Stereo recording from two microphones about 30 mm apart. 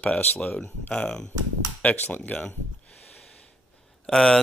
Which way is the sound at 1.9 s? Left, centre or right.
Left.